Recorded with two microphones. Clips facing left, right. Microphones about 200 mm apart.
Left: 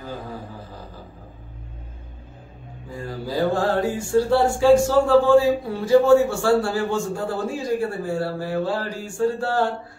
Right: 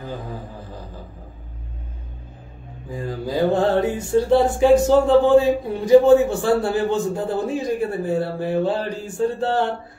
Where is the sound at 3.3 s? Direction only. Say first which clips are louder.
Right 3 dB; 20° right (ahead or behind).